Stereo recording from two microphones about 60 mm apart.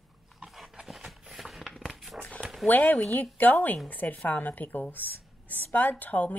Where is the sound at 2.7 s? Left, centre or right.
Left.